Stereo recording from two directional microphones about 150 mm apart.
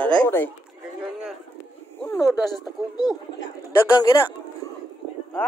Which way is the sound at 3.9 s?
30° left (ahead or behind).